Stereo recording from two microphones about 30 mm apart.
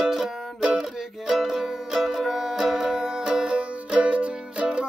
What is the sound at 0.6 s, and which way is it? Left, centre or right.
Music, centre.